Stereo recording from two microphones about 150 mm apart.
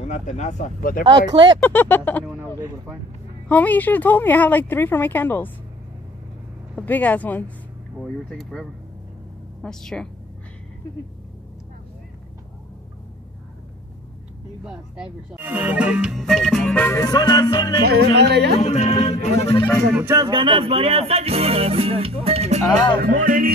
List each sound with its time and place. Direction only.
0.0 s speech: 50° left (ahead or behind)
1.0 s music: 30° right (ahead or behind)
1.6 s speech: 15° left (ahead or behind)
3.4 s speech: 10° left (ahead or behind)
6.9 s speech: 10° left (ahead or behind)
8.0 s music: centre (ahead or behind)
14.6 s music: 5° right (ahead or behind); by 17.0 s 10° left (ahead or behind)
17.0 s music: 25° left (ahead or behind)
17.8 s speech: 90° right
18.6 s speech: 50° left (ahead or behind)
19.9 s music: 15° right (ahead or behind)
20.2 s music: 35° right (ahead or behind)
22.9 s music: 70° right (ahead or behind)